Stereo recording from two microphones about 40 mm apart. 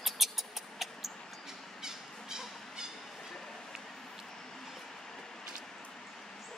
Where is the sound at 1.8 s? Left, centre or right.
Centre.